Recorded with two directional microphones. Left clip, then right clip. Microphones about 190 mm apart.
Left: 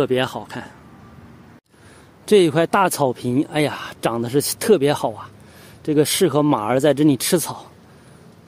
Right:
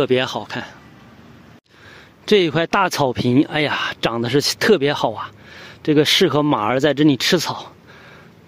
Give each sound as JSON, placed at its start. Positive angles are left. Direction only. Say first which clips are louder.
{"t": 0.0, "sound": "speech", "louder": "right 2 dB", "side_deg": 0}
{"t": 2.2, "sound": "speech", "louder": "left 1 dB", "side_deg": 5}